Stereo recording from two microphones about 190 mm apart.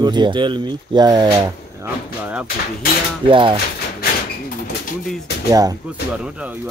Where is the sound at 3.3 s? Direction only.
25° right (ahead or behind).